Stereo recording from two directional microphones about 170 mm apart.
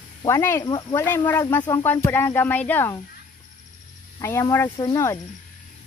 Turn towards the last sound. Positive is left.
turn(degrees=20)  # may be behind; listen again after turning